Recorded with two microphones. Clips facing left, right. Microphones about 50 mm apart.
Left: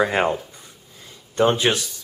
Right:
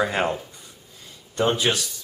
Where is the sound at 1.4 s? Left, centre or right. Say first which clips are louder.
Left 3 dB; left.